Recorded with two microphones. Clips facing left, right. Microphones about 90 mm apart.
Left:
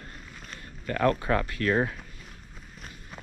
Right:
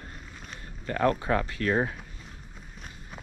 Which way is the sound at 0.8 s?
25° right (ahead or behind).